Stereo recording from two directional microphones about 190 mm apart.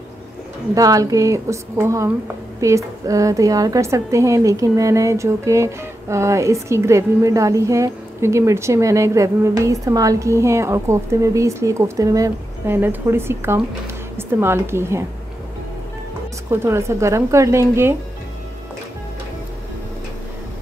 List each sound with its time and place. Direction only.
0.7 s a woman's voice: 20° right (ahead or behind)
16.4 s a woman's voice: 15° right (ahead or behind)